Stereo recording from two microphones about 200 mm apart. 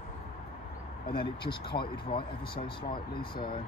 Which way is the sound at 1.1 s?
25° left (ahead or behind).